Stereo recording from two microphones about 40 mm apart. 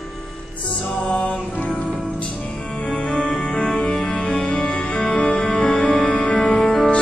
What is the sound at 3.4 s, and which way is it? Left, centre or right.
Music, left.